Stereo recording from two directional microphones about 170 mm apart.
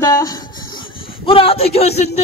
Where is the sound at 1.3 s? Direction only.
35° left (ahead or behind).